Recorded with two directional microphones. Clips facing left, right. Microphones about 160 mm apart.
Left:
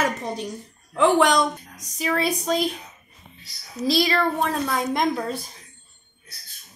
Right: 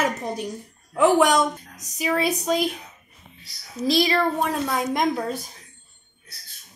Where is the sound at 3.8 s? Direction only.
20° right (ahead or behind).